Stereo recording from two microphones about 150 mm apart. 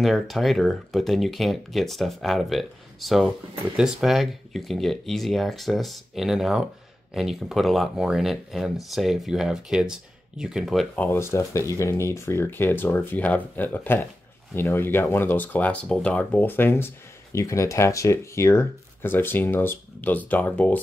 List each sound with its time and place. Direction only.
0.0 s speech: centre (ahead or behind)
11.0 s speech: 15° left (ahead or behind)